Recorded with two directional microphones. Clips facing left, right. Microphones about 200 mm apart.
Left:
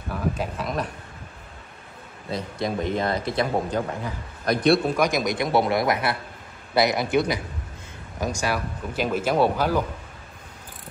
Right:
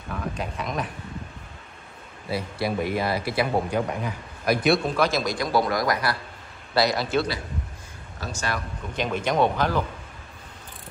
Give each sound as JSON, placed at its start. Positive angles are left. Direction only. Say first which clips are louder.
{"t": 0.1, "sound": "speech", "louder": "left 3 dB", "side_deg": 5}
{"t": 2.3, "sound": "a man's voice", "louder": "right 1 dB", "side_deg": -10}
{"t": 4.9, "sound": "a man's voice", "louder": "left 1 dB", "side_deg": 15}